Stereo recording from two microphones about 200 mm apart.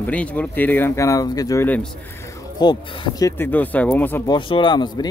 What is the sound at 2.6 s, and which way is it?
Speech, 20° left (ahead or behind).